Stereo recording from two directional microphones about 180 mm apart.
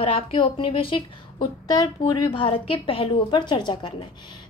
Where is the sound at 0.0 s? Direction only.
30° left (ahead or behind).